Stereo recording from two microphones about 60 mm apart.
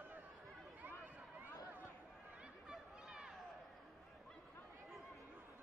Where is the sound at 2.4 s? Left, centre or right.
Centre.